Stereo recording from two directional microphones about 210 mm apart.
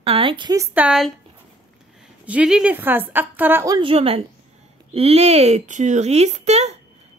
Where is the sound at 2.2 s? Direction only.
5° right (ahead or behind); by 6.7 s 30° right (ahead or behind).